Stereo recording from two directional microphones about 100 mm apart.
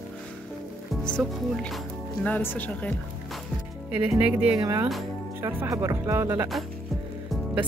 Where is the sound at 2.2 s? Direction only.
15° left (ahead or behind).